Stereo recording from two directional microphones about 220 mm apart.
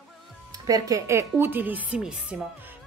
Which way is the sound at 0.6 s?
15° right (ahead or behind).